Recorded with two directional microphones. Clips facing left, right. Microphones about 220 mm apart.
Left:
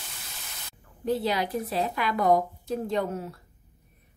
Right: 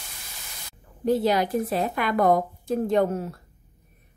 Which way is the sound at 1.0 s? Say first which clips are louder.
Right 5 dB; 45° right (ahead or behind).